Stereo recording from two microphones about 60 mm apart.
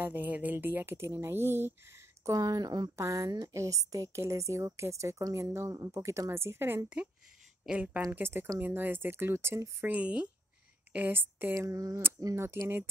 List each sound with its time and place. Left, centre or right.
0.0 s speech: right
2.3 s speech: right
3.0 s a woman's voice: right
7.7 s speech: right
8.1 s speech: right
9.8 s speech: right
10.9 s speech: right
11.5 s a woman's voice: right
12.6 s speech: right